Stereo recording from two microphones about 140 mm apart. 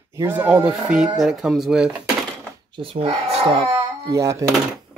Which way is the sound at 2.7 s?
40° right (ahead or behind).